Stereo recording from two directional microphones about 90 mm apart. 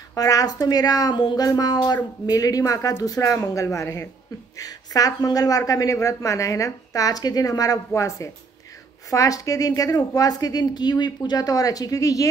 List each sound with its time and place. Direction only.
0.1 s a woman's voice: 40° left (ahead or behind)